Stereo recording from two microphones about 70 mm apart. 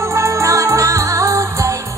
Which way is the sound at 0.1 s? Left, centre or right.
Right.